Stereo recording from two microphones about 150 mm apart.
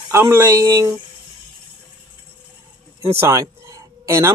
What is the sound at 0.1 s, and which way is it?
Speech, 15° right (ahead or behind).